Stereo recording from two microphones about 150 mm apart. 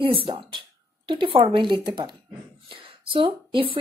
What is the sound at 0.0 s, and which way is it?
A woman's voice, 35° right (ahead or behind).